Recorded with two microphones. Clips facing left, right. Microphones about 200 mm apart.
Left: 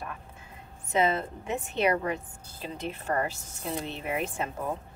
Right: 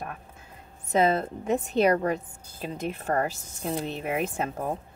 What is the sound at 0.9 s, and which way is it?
A woman's voice, 40° right (ahead or behind).